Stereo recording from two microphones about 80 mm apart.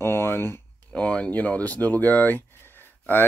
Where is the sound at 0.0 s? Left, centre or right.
Left.